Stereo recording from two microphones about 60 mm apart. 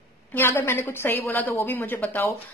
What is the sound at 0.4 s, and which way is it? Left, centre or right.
Speech, left.